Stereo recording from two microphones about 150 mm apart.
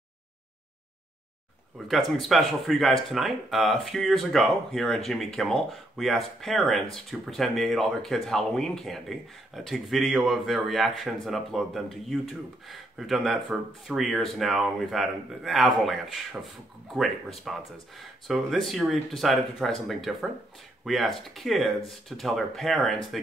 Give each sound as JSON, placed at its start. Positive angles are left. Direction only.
{"t": 1.9, "sound": "speech", "side_deg": 0}